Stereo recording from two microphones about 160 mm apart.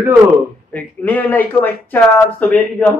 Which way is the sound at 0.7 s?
10° left (ahead or behind).